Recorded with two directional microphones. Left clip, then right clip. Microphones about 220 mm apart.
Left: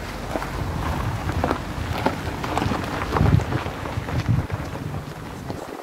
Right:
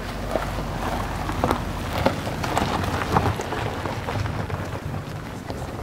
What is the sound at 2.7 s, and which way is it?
Boat, 45° right (ahead or behind).